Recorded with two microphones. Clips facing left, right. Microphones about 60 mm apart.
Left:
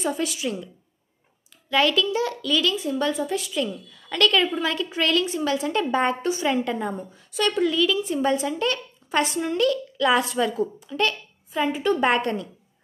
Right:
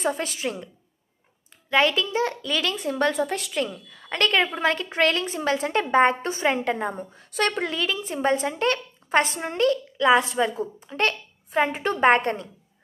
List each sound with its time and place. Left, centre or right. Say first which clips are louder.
0.0 s a woman's voice: even; right
1.7 s a woman's voice: even; right
10.9 s speech: even; right